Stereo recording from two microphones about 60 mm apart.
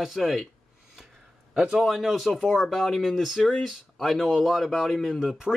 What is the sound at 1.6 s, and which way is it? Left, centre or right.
Speech, centre.